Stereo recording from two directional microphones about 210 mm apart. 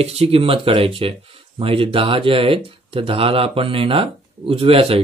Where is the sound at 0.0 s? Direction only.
30° right (ahead or behind).